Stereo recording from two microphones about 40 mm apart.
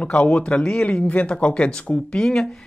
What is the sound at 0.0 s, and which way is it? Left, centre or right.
Speech, left.